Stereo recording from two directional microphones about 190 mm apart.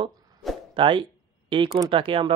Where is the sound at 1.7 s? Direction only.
25° right (ahead or behind).